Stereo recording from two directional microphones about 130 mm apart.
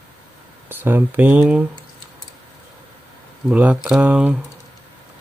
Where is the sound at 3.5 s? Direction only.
10° right (ahead or behind).